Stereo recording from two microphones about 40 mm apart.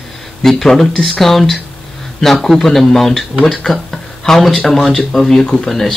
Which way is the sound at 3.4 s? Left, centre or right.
Centre.